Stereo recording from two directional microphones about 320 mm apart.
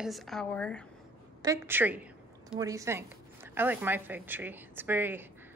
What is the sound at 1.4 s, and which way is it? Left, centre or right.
A woman's voice, centre.